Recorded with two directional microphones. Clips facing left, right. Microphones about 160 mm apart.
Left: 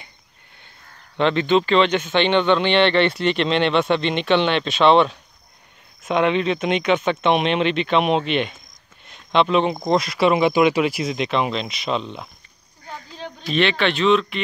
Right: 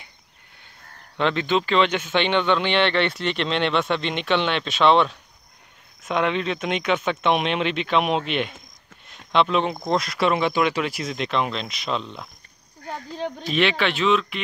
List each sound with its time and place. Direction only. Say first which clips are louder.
1.1 s speech: left 4 dB; 5° right (ahead or behind)
12.8 s speech: right 5 dB; 45° right (ahead or behind)
13.5 s speech: left 3 dB; 5° right (ahead or behind)